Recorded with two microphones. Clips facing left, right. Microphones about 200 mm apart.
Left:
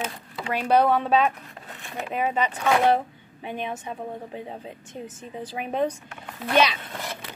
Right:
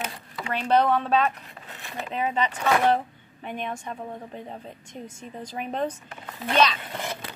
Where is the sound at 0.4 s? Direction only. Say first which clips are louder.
Left 2 dB; 10° left (ahead or behind).